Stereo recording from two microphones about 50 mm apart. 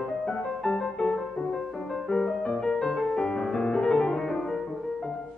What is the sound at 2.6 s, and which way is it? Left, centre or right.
Music, centre.